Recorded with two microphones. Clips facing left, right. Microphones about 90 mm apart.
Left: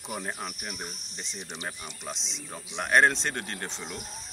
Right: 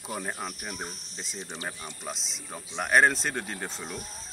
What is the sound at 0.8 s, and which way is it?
Speech, 20° left (ahead or behind).